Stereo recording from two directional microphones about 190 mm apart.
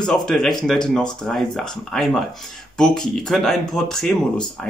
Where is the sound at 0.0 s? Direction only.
5° left (ahead or behind).